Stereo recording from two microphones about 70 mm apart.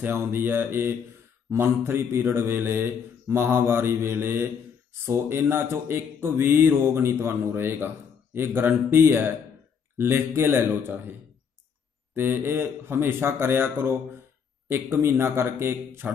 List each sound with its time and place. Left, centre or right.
0.0 s speech: right